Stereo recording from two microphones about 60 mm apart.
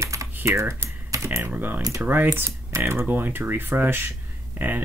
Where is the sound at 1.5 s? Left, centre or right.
Right.